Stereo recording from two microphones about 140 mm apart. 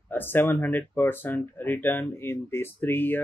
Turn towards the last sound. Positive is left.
turn(degrees=15)  # may be behind; listen again after turning